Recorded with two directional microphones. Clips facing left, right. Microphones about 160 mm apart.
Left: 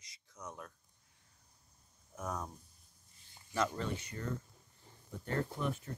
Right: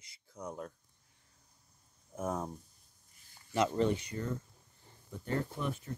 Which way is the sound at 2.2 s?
25° right (ahead or behind).